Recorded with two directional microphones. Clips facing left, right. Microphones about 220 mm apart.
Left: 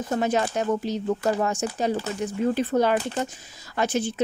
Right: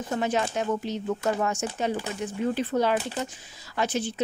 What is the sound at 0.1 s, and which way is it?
Speech, 40° left (ahead or behind).